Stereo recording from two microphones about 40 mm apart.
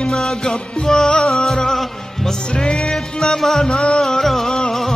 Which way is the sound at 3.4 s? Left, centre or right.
Centre.